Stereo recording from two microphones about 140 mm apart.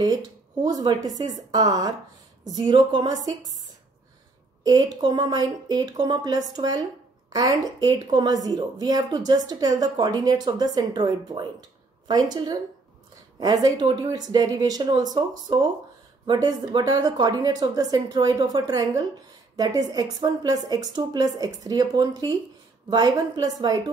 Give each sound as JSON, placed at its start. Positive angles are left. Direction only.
{"t": 0.7, "sound": "a woman's voice", "side_deg": -30}
{"t": 5.0, "sound": "a woman's voice", "side_deg": -30}
{"t": 16.3, "sound": "a woman's voice", "side_deg": -30}